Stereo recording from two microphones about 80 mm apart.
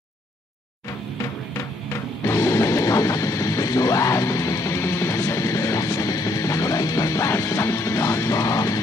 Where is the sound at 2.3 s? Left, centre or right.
Left.